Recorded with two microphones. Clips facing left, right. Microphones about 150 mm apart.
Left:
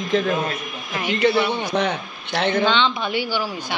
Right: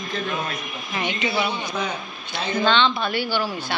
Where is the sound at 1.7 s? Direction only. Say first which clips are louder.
Left 6 dB; 70° left (ahead or behind).